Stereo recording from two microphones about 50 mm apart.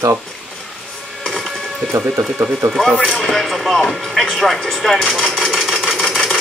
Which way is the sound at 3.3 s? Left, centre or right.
Centre.